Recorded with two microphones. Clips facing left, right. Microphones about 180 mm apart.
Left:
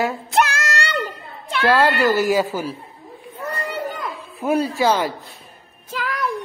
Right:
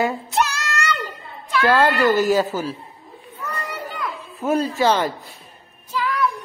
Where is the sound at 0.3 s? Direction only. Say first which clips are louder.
Left 3 dB; 55° left (ahead or behind).